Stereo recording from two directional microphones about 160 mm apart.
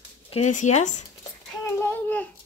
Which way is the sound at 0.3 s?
50° left (ahead or behind).